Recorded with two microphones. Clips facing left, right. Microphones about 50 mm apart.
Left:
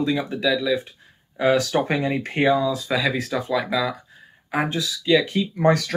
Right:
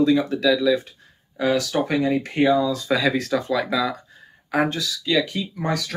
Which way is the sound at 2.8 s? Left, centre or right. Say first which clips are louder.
Right 2 dB; centre.